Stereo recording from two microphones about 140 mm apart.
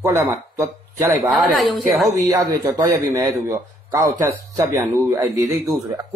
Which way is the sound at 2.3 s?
25° right (ahead or behind).